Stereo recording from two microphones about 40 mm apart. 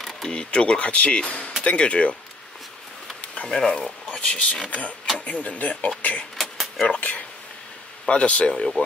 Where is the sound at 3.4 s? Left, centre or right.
Centre.